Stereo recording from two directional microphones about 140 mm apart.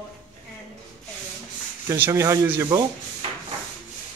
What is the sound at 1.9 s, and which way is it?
Speech, 20° right (ahead or behind).